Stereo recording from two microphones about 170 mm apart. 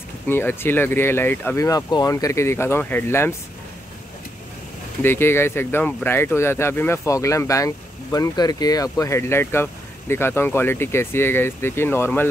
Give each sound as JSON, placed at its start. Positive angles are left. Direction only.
{"t": 0.3, "sound": "speech", "side_deg": 15}
{"t": 5.0, "sound": "speech", "side_deg": 15}